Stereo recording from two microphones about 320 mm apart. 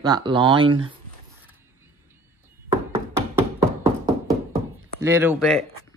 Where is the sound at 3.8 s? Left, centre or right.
Centre.